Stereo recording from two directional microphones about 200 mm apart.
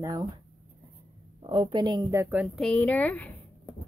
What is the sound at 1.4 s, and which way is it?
A woman's voice, 25° right (ahead or behind).